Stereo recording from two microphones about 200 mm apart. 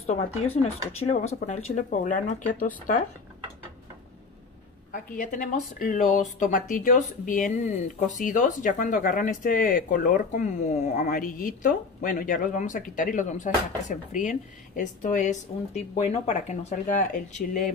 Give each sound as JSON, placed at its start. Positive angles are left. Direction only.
{"t": 0.0, "sound": "speech", "side_deg": 30}
{"t": 1.8, "sound": "speech", "side_deg": 40}
{"t": 4.9, "sound": "speech", "side_deg": 40}